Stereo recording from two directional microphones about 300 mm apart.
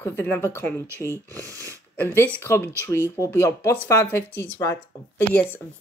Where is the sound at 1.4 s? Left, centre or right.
Centre.